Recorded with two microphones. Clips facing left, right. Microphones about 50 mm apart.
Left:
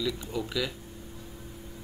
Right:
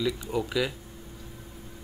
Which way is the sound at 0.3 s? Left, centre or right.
Centre.